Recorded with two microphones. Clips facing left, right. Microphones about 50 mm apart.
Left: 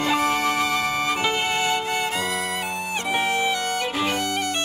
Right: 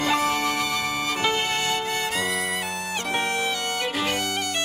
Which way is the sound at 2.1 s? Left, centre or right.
Centre.